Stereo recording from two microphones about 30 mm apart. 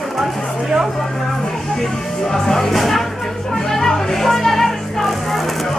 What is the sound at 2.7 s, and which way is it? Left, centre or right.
Music, centre.